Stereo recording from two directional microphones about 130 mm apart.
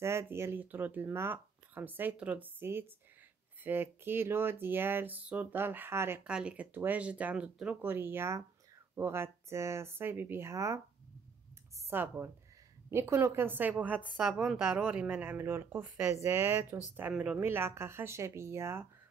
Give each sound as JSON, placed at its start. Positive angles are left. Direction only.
{"t": 0.0, "sound": "speech", "side_deg": -20}
{"t": 6.2, "sound": "speech", "side_deg": -5}
{"t": 11.8, "sound": "speech", "side_deg": -15}
{"t": 17.4, "sound": "speech", "side_deg": -15}